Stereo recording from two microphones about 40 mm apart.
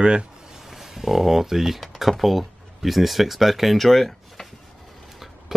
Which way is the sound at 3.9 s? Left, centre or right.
Centre.